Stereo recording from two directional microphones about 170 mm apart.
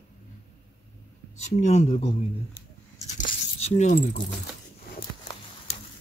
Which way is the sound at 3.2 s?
45° left (ahead or behind).